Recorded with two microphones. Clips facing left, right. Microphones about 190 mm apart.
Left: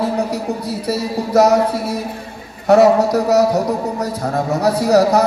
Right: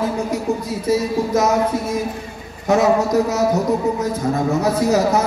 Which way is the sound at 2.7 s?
65° left (ahead or behind).